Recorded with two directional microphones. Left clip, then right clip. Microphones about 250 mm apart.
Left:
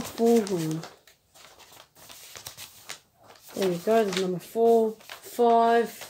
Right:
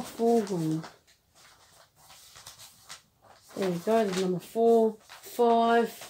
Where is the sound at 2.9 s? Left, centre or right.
Left.